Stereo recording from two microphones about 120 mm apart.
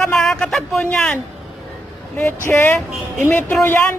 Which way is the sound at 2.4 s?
15° left (ahead or behind).